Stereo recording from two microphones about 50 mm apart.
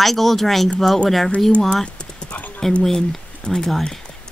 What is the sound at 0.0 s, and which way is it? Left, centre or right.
Speech, centre.